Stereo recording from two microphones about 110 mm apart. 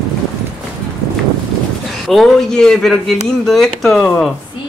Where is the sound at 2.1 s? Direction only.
5° left (ahead or behind).